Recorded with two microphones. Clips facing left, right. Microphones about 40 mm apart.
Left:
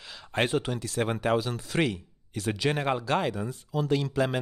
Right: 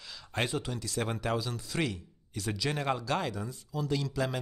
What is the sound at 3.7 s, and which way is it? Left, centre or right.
Speech, left.